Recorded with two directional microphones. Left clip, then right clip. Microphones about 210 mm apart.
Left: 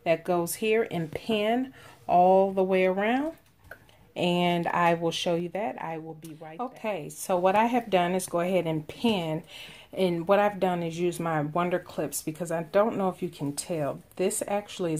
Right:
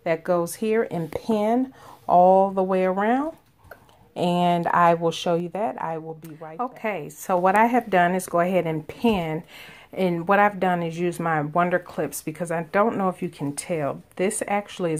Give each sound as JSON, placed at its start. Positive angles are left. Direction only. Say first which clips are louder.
{"t": 0.0, "sound": "speech", "louder": "right 3 dB", "side_deg": -15}